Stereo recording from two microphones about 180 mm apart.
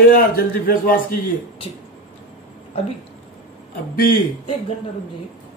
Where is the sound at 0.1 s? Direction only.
55° left (ahead or behind).